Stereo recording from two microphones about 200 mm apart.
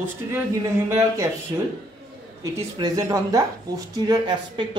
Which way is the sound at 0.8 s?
15° right (ahead or behind).